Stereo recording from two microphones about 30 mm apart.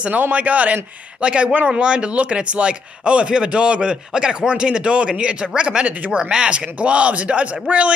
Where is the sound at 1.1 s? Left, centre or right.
Right.